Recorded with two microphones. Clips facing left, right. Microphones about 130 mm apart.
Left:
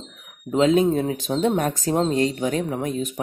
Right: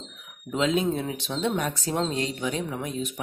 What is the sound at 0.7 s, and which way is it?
Speech, 40° left (ahead or behind).